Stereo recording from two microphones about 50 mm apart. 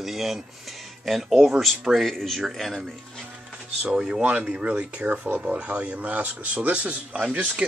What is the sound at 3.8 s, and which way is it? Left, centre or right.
Speech, centre.